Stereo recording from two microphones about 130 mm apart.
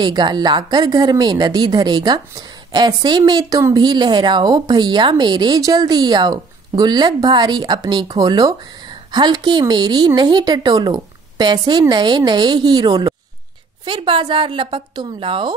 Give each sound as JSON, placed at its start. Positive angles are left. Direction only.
{"t": 0.0, "sound": "speech", "side_deg": -35}